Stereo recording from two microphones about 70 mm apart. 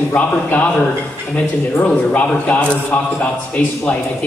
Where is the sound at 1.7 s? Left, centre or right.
Left.